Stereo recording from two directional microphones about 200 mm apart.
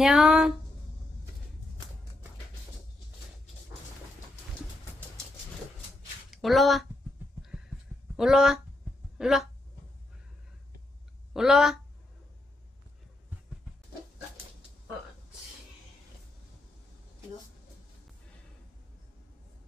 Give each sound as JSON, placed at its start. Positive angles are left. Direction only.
{"t": 0.0, "sound": "speech", "side_deg": 0}
{"t": 6.3, "sound": "speech", "side_deg": 0}
{"t": 8.2, "sound": "speech", "side_deg": 0}
{"t": 11.3, "sound": "speech", "side_deg": 0}